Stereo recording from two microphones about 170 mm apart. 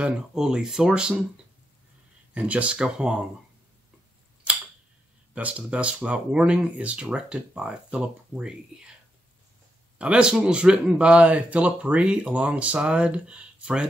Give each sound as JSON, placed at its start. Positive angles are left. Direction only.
{"t": 0.0, "sound": "speech", "side_deg": -5}
{"t": 2.3, "sound": "speech", "side_deg": -10}
{"t": 5.3, "sound": "speech", "side_deg": -5}
{"t": 9.9, "sound": "speech", "side_deg": -5}